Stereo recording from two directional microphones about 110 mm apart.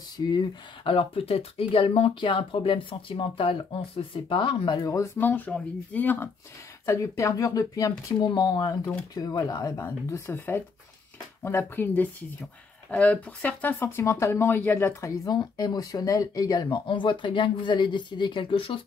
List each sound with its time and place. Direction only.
0.3 s speech: 50° left (ahead or behind)
4.8 s speech: 25° left (ahead or behind)
16.7 s speech: 45° left (ahead or behind)